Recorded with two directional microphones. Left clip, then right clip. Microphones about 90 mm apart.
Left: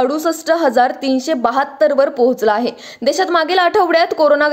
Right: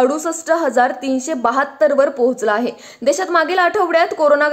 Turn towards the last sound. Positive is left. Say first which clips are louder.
# left 1 dB
turn(degrees=25)  # may be behind; listen again after turning